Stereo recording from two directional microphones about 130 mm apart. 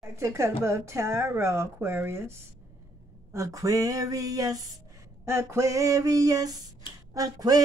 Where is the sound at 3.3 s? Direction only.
25° right (ahead or behind).